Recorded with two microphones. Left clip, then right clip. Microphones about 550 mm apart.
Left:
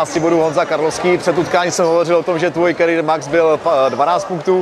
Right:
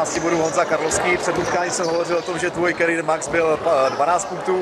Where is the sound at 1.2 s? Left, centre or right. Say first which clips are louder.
Left 6 dB; left.